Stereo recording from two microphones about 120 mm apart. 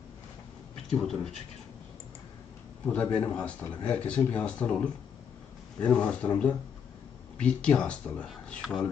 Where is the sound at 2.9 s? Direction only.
15° left (ahead or behind).